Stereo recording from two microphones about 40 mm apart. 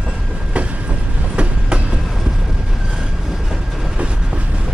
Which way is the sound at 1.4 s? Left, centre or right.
Right.